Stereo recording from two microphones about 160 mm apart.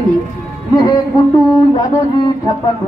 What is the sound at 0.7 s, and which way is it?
A woman's voice, 20° left (ahead or behind).